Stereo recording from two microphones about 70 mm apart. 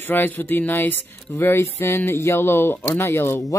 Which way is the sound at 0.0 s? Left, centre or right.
Left.